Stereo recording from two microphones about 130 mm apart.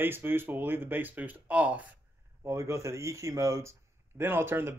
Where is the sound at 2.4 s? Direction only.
20° right (ahead or behind).